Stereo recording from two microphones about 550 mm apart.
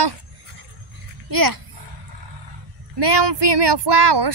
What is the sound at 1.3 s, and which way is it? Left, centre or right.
Speech, right.